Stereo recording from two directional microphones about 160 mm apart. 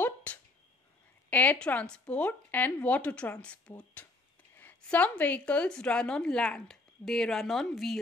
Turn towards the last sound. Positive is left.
turn(degrees=0)  # may be behind; listen again after turning